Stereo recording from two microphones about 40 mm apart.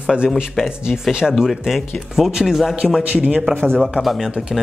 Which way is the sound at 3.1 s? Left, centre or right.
Right.